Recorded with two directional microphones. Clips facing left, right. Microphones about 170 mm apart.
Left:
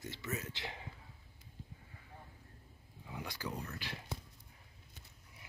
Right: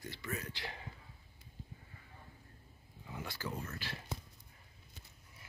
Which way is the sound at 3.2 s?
15° left (ahead or behind).